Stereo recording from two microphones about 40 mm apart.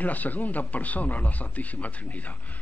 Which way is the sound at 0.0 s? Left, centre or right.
Left.